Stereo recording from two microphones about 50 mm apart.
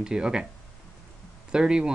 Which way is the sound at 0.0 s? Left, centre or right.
Centre.